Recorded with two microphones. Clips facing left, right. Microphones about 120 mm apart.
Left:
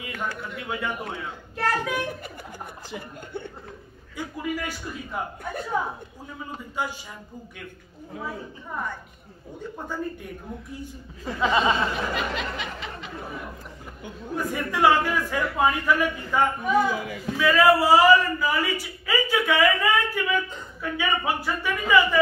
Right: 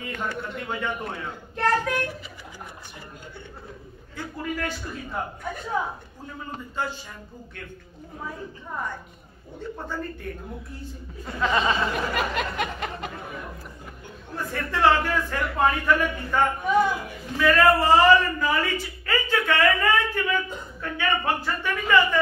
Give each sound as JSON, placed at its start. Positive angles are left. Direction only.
{"t": 0.0, "sound": "speech", "side_deg": 5}
{"t": 4.2, "sound": "a man's voice", "side_deg": 10}
{"t": 6.8, "sound": "a man's voice", "side_deg": 10}
{"t": 9.6, "sound": "a man's voice", "side_deg": 10}
{"t": 11.4, "sound": "a man's voice", "side_deg": 10}
{"t": 11.9, "sound": "speech", "side_deg": -55}
{"t": 14.3, "sound": "a man's voice", "side_deg": 10}